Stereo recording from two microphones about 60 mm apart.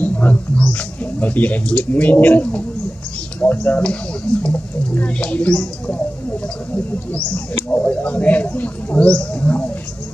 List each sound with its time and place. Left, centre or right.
0.0 s wild animals: left
0.7 s speech: left
3.6 s speech: left
7.3 s speech: left